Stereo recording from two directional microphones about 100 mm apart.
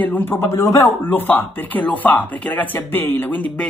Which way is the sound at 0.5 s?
30° left (ahead or behind).